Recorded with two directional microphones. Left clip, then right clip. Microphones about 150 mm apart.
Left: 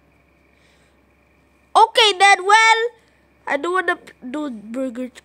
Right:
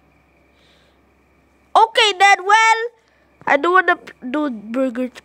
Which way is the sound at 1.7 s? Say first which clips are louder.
Even; 10° right (ahead or behind).